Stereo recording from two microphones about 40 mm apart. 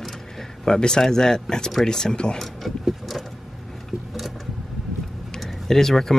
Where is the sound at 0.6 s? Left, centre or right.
Centre.